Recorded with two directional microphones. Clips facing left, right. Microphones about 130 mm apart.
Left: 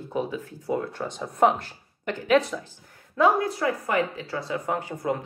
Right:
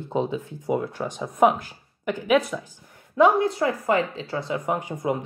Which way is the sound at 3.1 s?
25° right (ahead or behind).